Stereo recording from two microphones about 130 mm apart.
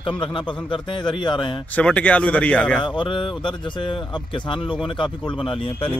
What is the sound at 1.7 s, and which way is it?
A man's voice, 10° left (ahead or behind).